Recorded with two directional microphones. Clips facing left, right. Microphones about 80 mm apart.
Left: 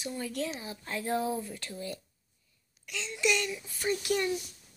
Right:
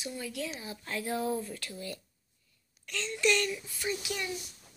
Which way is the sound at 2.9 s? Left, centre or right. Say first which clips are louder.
Right 1 dB; centre.